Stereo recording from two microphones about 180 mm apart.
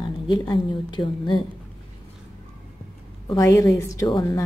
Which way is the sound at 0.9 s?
25° left (ahead or behind).